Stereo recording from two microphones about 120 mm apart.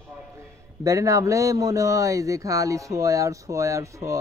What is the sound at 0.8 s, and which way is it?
A man's voice, 25° right (ahead or behind).